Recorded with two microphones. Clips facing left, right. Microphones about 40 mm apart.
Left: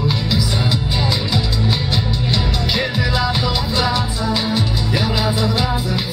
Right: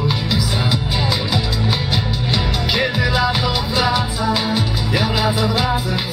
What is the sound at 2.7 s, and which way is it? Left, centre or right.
Music, centre.